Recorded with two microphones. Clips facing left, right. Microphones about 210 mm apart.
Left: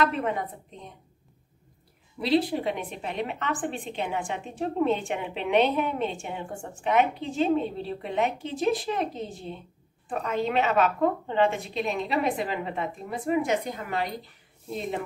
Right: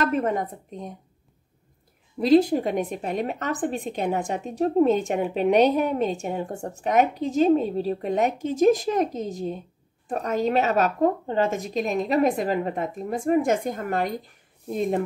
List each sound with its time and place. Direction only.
0.0 s a woman's voice: 45° right (ahead or behind)
2.1 s a woman's voice: 45° right (ahead or behind)